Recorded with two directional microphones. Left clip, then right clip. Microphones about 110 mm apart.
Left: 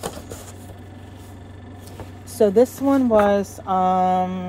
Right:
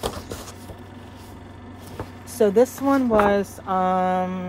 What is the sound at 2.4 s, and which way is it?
Speech, centre (ahead or behind).